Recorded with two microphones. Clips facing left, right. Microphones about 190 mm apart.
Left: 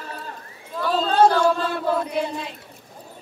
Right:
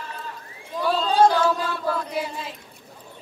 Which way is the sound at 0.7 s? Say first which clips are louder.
Left 1 dB; 10° right (ahead or behind).